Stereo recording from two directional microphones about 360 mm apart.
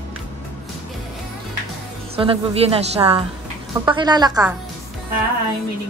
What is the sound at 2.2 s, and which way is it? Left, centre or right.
A woman's voice, centre.